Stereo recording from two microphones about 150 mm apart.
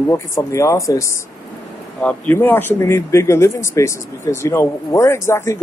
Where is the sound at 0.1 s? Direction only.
20° left (ahead or behind).